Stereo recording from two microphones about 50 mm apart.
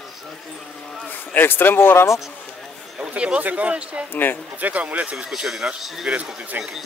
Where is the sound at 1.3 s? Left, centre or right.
Left.